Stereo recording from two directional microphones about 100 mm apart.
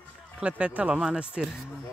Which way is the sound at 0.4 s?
15° right (ahead or behind).